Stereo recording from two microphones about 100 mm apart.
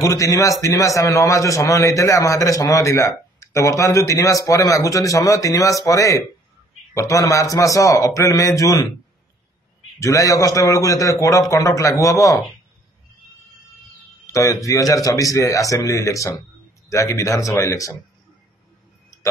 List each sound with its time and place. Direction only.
0.0 s a man's voice: 35° left (ahead or behind)
9.9 s a man's voice: 35° left (ahead or behind)
14.2 s a man's voice: 35° left (ahead or behind)